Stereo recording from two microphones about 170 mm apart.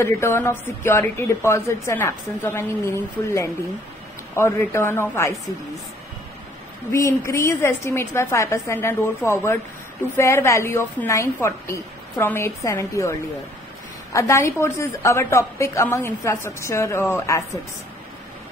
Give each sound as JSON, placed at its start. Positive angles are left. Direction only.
{"t": 0.0, "sound": "a woman's voice", "side_deg": 15}
{"t": 4.4, "sound": "a woman's voice", "side_deg": 15}
{"t": 6.9, "sound": "a woman's voice", "side_deg": 15}
{"t": 14.1, "sound": "a woman's voice", "side_deg": 15}